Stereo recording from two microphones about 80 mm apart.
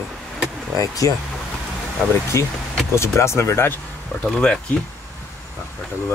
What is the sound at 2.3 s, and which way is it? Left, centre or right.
Speech, left.